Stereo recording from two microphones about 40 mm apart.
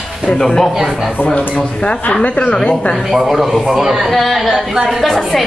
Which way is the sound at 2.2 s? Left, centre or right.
Left.